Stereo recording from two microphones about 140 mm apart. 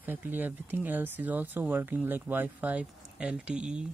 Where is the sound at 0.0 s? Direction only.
15° right (ahead or behind).